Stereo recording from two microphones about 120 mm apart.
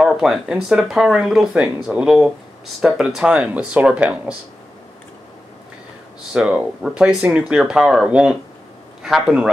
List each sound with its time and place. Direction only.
0.0 s speech: centre (ahead or behind)
6.3 s speech: 10° right (ahead or behind)